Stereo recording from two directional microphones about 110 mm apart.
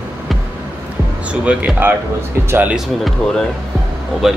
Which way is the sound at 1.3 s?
10° right (ahead or behind).